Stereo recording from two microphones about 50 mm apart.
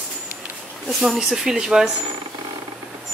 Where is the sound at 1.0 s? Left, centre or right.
Centre.